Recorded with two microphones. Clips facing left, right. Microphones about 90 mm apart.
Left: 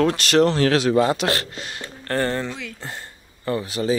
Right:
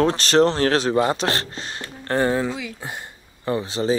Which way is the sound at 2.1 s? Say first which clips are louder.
Right 3 dB; 15° right (ahead or behind).